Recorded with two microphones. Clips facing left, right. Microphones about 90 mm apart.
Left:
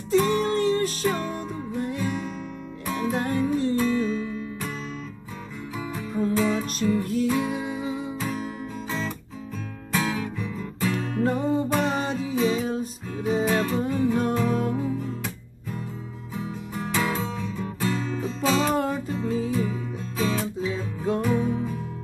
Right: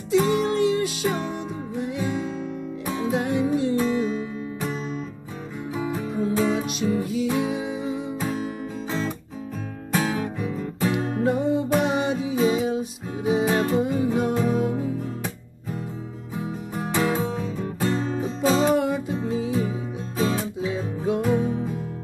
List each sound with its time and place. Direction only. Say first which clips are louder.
0.1 s music: right 1 dB; 15° right (ahead or behind)
5.8 s music: right 2 dB; 25° right (ahead or behind); by 8.1 s centre (ahead or behind)
9.9 s music: right 2 dB; 30° right (ahead or behind)
16.3 s music: right 2 dB; 15° right (ahead or behind); by 18.2 s 30° right (ahead or behind)
18.6 s music: right 3 dB; 15° right (ahead or behind)